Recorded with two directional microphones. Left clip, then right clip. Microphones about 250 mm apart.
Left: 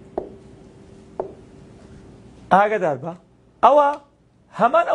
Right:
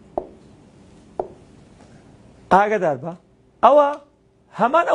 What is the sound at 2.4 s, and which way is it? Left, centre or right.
A man's voice, centre.